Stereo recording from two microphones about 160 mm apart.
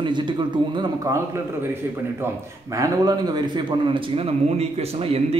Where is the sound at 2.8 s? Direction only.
25° right (ahead or behind).